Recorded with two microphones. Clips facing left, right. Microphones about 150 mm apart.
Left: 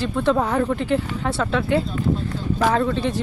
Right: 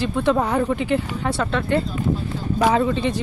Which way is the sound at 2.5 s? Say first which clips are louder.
Right 2 dB; 10° right (ahead or behind).